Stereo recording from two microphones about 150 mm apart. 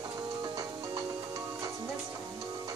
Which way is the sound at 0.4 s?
25° right (ahead or behind).